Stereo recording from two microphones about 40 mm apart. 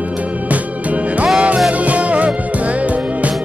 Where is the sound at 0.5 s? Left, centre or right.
Right.